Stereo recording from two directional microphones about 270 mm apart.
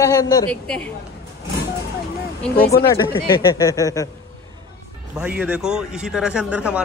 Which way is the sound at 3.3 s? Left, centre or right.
Centre.